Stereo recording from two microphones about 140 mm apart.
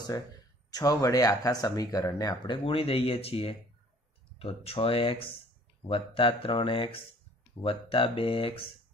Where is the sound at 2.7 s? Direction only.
40° left (ahead or behind).